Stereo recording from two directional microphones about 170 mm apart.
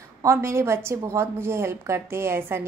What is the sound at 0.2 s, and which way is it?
A woman's voice, 15° right (ahead or behind).